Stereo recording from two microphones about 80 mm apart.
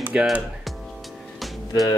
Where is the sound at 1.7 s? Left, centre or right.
Left.